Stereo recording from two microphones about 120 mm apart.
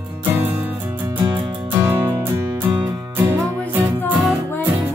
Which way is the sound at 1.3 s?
20° right (ahead or behind).